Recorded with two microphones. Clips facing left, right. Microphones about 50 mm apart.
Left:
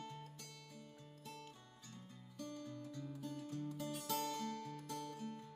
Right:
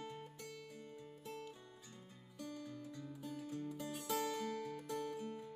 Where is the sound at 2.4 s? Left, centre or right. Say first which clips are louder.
Even; centre.